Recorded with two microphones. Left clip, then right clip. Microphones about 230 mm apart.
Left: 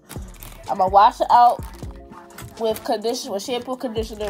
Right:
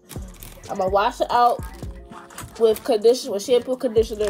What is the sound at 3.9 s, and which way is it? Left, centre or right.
Speech, centre.